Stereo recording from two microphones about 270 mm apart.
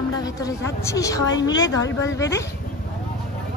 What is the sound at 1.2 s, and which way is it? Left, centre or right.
Speech, left.